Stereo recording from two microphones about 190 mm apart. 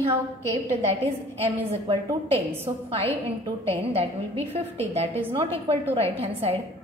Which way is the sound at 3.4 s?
30° right (ahead or behind).